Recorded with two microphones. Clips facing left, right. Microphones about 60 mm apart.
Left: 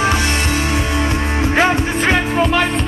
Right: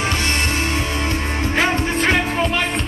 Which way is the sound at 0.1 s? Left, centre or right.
Centre.